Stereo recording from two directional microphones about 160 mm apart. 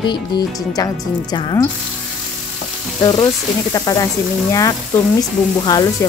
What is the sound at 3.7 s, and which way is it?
Speech, 20° left (ahead or behind).